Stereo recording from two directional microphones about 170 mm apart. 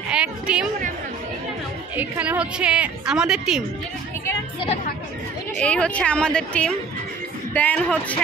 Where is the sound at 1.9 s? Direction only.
10° right (ahead or behind).